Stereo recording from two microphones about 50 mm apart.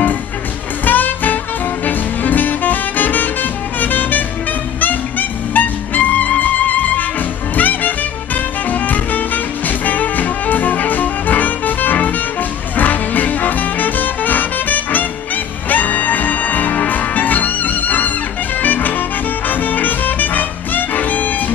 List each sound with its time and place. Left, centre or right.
0.8 s music: left
5.5 s music: left